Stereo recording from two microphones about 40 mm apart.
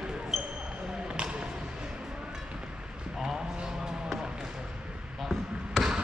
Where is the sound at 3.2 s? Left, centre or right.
Centre.